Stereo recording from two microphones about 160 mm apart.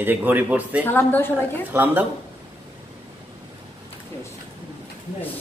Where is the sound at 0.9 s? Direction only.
10° left (ahead or behind).